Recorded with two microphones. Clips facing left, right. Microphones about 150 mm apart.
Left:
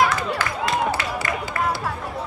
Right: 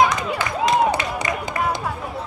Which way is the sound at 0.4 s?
20° right (ahead or behind).